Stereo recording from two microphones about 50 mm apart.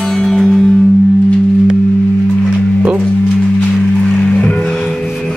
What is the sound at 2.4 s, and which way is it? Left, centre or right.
Music, right.